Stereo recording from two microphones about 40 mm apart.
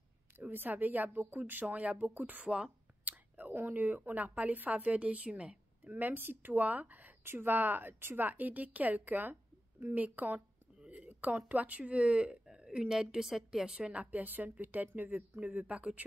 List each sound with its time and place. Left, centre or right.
0.5 s speech: right
2.4 s speech: right
3.1 s whispering: right
3.5 s a woman's voice: right
5.9 s speech: right
7.2 s speech: right
8.3 s a woman's voice: right; by 13.7 s centre
13.7 s a woman's voice: right
14.2 s speech: right